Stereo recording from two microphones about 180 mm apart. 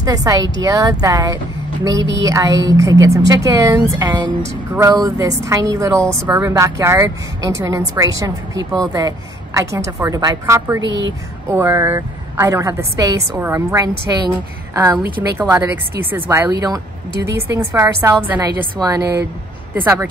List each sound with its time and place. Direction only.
0.0 s a woman's voice: 20° right (ahead or behind)
10.9 s a woman's voice: 80° right
11.5 s a woman's voice: 15° right (ahead or behind)